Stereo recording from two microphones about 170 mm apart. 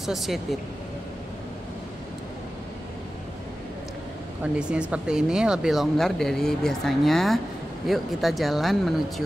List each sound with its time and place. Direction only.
0.0 s speech: centre (ahead or behind)
4.6 s speech: 5° right (ahead or behind)